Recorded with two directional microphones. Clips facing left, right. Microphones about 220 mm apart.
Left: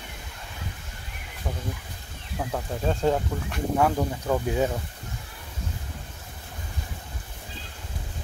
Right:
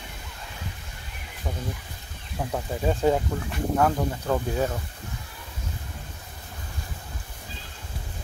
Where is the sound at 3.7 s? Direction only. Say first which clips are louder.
Even; 5° left (ahead or behind).